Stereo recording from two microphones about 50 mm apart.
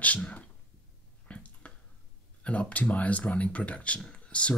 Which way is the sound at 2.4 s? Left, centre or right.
Left.